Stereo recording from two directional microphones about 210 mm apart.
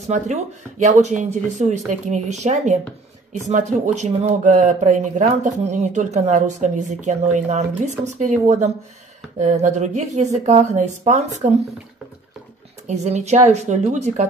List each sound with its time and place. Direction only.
0.1 s speech: 35° right (ahead or behind)
12.8 s speech: 30° right (ahead or behind)